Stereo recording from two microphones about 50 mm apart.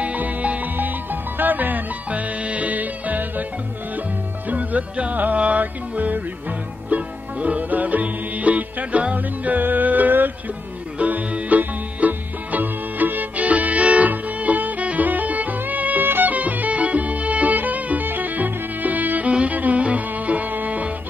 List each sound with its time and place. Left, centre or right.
0.0 s music: right
4.5 s music: right